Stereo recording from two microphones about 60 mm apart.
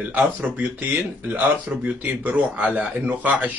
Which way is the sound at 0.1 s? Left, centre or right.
Right.